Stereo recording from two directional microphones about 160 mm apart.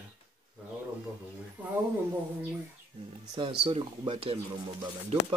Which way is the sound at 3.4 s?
30° right (ahead or behind).